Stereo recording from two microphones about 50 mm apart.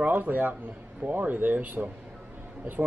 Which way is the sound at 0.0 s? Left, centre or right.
Right.